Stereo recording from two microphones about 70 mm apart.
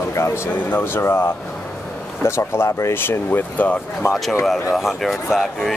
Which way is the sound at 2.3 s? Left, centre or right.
Left.